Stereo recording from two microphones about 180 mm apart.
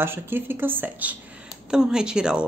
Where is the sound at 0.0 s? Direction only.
10° right (ahead or behind).